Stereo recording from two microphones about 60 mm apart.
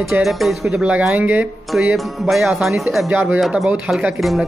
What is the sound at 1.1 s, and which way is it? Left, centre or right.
Speech, right.